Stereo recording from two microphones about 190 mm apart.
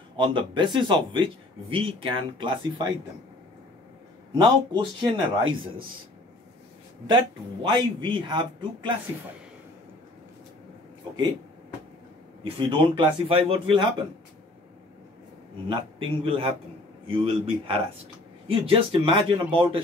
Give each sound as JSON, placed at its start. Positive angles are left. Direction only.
{"t": 0.2, "sound": "speech", "side_deg": -25}
{"t": 4.4, "sound": "speech", "side_deg": -25}
{"t": 7.6, "sound": "speech", "side_deg": -25}
{"t": 12.5, "sound": "speech", "side_deg": -25}
{"t": 15.7, "sound": "speech", "side_deg": -30}